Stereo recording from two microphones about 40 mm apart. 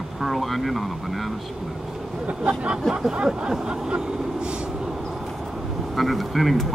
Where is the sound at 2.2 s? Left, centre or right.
Right.